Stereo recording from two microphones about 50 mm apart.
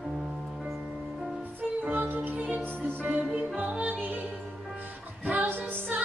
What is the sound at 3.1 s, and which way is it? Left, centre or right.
Music, right.